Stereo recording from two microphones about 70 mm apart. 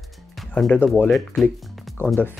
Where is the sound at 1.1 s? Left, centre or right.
Centre.